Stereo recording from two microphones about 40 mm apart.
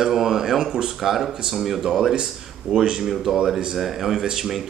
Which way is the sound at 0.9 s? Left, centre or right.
Centre.